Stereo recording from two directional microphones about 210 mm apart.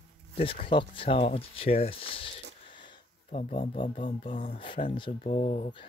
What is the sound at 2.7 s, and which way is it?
Speech, 25° left (ahead or behind).